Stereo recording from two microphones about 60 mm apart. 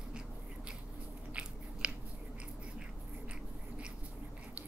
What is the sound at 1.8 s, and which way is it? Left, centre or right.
Chewing, centre.